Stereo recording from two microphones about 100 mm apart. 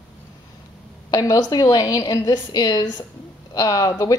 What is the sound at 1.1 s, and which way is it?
A woman's voice, 40° left (ahead or behind).